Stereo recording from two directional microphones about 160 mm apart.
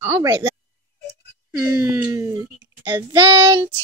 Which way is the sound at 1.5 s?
15° right (ahead or behind).